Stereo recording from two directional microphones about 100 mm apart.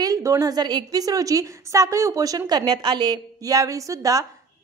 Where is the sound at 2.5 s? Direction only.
45° right (ahead or behind).